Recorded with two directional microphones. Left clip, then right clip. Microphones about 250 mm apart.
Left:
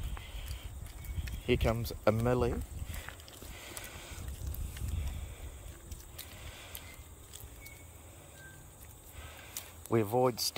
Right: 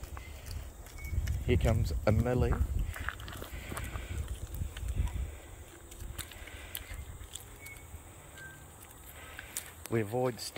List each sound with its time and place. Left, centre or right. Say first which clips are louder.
1.4 s speech: left 1 dB; centre
3.5 s a sound: even; centre
9.8 s speech: left 3 dB; centre